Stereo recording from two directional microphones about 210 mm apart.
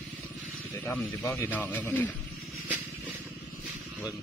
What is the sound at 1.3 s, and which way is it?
Speech, 10° left (ahead or behind).